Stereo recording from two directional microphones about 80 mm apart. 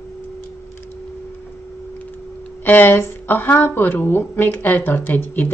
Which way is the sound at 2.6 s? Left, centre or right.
Left.